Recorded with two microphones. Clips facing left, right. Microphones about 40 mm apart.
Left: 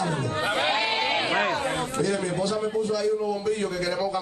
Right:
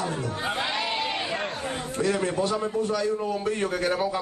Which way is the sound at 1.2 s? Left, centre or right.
Left.